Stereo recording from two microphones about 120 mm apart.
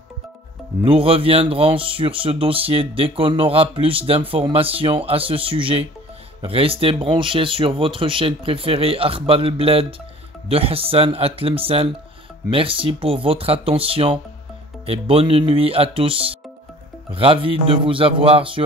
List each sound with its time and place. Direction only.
0.8 s speech: 50° right (ahead or behind)